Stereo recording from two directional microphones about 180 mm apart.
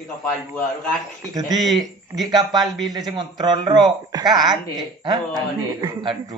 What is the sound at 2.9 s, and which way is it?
A man's voice, 20° right (ahead or behind).